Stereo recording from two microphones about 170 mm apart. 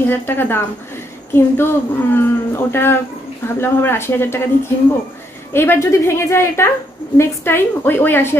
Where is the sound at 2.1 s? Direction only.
15° left (ahead or behind).